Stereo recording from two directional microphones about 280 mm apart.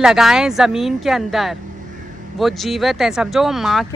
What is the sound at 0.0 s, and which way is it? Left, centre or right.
Speech, centre.